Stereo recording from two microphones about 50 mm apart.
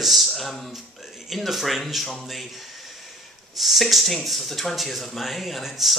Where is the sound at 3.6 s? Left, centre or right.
Centre.